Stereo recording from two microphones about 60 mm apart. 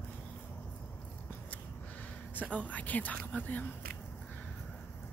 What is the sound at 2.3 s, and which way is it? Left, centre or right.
Speech, left.